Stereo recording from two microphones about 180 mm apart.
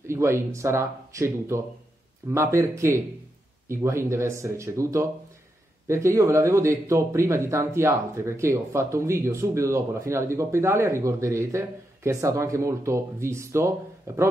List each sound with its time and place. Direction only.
0.0 s speech: 15° right (ahead or behind)